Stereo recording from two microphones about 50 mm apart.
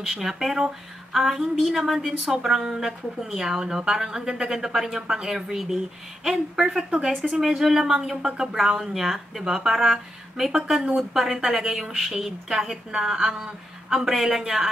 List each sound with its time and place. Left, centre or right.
0.0 s a woman's voice: centre
7.1 s a woman's voice: centre